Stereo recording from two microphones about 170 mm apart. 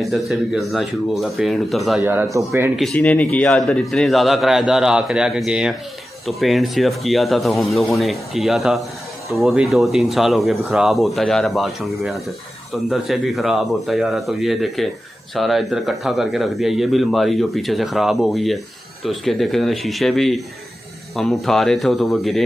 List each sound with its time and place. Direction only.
0.0 s speech: centre (ahead or behind)
2.0 s speech: 10° right (ahead or behind)
2.7 s speech: centre (ahead or behind)